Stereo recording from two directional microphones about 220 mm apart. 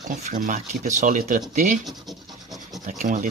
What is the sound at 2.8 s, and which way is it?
Speech, 35° right (ahead or behind).